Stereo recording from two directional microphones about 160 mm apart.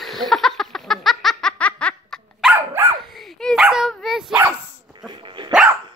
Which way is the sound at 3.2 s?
Centre (ahead or behind).